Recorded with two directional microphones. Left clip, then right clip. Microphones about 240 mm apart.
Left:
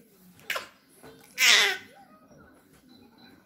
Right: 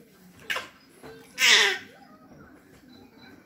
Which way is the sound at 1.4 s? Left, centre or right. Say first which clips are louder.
Right 1 dB; centre.